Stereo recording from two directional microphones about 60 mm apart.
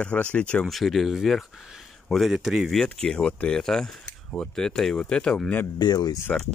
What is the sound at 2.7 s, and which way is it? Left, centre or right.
Speech, centre.